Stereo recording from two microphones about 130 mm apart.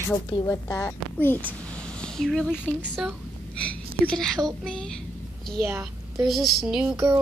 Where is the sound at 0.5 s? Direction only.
20° left (ahead or behind).